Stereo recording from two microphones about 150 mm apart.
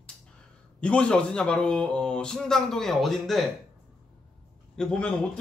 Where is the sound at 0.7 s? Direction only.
5° left (ahead or behind).